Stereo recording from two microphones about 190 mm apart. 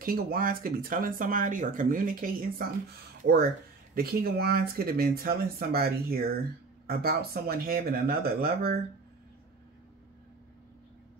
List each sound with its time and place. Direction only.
0.0 s speech: 50° right (ahead or behind)
3.9 s speech: 50° right (ahead or behind)